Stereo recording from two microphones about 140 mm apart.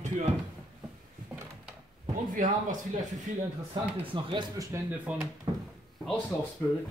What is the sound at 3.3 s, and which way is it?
Speech, 65° right (ahead or behind).